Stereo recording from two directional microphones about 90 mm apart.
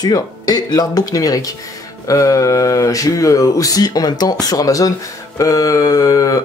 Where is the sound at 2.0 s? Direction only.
40° left (ahead or behind).